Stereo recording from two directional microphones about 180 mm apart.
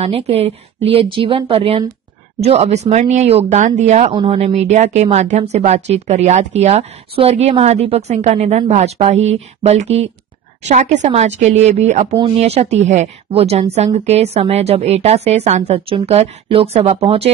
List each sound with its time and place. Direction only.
0.0 s speech: 35° right (ahead or behind)